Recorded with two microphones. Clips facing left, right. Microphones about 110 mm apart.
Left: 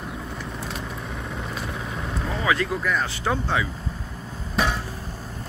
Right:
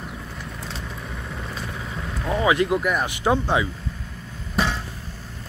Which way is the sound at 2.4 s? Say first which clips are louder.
Right 4 dB; 20° right (ahead or behind).